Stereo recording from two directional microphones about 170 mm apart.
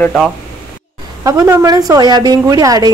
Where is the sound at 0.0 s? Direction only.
5° left (ahead or behind).